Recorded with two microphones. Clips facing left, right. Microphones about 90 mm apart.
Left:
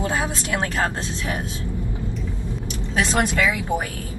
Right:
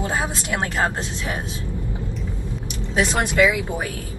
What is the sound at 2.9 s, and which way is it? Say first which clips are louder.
Speech: right 1 dB; 20° right (ahead or behind).